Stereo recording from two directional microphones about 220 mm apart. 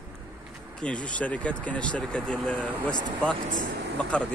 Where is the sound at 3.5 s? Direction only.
45° right (ahead or behind).